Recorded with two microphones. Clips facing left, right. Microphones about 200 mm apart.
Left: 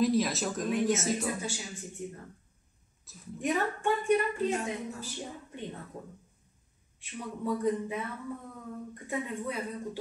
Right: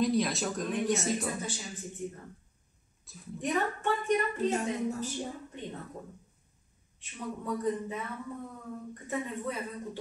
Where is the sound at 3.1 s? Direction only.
10° left (ahead or behind).